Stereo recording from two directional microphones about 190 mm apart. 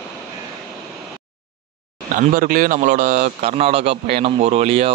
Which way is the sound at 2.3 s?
45° right (ahead or behind).